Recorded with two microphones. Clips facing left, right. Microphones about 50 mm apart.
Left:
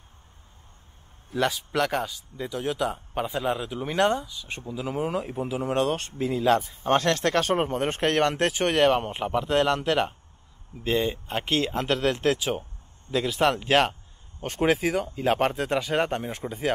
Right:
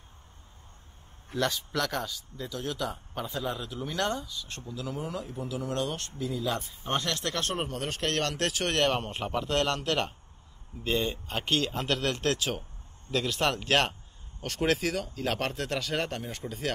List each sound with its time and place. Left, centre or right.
1.3 s speech: centre
4.8 s speech: left
7.4 s speech: left